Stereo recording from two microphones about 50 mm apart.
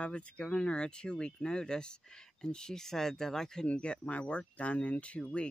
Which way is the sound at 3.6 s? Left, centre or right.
Left.